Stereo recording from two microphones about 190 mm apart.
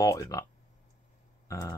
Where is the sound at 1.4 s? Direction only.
15° left (ahead or behind).